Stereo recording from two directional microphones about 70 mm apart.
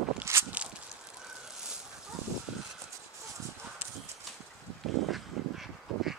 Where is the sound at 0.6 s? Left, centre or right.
Centre.